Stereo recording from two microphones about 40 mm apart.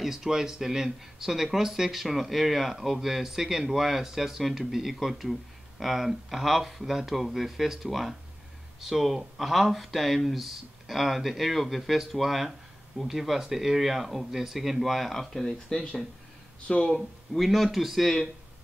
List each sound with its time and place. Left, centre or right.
0.0 s speech: centre
15.4 s speech: centre
16.9 s speech: centre